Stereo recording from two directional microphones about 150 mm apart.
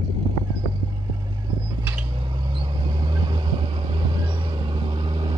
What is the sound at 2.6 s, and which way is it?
Vehicle, 30° right (ahead or behind).